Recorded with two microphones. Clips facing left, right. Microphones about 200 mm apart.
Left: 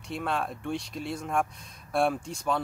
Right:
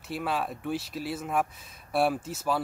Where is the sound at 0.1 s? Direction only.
5° right (ahead or behind).